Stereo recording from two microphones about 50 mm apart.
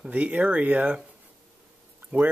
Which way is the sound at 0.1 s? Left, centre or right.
Right.